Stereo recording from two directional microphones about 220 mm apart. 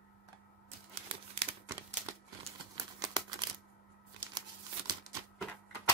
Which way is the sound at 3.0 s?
20° right (ahead or behind).